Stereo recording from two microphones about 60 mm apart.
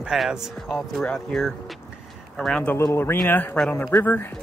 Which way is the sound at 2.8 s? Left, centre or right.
Left.